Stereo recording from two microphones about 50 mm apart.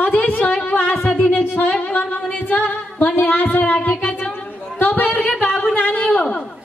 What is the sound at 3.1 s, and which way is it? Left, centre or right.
Music, left.